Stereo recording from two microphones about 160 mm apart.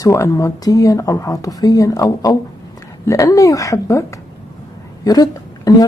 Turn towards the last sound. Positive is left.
turn(degrees=25)  # may be behind; listen again after turning